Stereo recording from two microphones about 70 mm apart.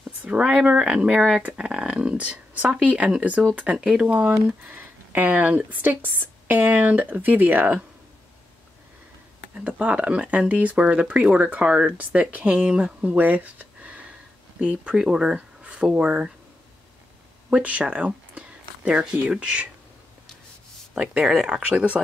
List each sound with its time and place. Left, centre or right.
0.2 s speech: centre
4.6 s speech: right
9.6 s speech: centre
17.5 s speech: centre
20.9 s speech: centre
21.6 s speech: centre